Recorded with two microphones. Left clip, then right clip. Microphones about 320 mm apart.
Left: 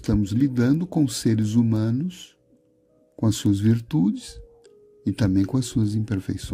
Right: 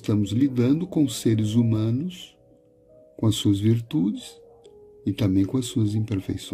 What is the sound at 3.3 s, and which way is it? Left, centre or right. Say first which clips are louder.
Speech: even; left.